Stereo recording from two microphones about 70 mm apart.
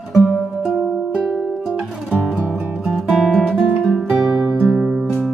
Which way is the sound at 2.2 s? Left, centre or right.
Centre.